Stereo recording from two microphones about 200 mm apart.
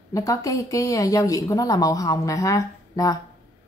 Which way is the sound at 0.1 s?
15° left (ahead or behind).